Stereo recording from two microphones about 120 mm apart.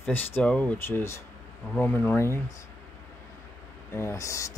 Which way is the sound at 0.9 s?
20° left (ahead or behind).